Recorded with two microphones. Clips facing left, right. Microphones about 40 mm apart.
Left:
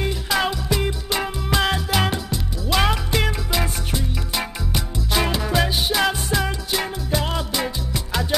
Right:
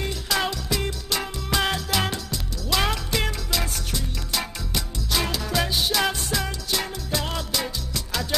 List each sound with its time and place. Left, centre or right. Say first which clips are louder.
0.0 s music: left 4 dB; centre